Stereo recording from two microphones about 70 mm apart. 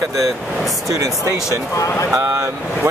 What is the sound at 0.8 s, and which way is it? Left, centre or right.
Speech, right.